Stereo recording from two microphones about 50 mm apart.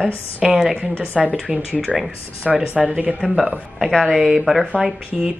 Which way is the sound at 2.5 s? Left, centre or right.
Right.